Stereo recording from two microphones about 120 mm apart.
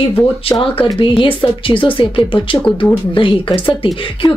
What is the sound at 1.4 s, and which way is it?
Speech, 45° left (ahead or behind).